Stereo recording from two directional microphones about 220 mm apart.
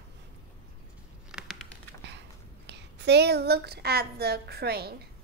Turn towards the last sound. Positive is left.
turn(degrees=-45)  # may be behind; listen again after turning